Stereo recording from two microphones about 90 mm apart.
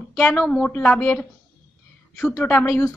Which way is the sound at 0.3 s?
10° left (ahead or behind).